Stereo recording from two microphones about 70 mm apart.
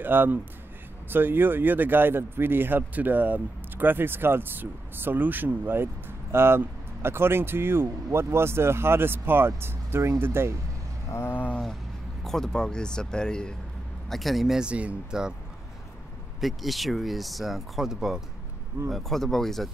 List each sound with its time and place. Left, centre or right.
0.0 s speech: right
11.1 s a sound: left
11.3 s a sound: left
12.2 s speech: centre
14.7 s speech: centre
16.3 s speech: centre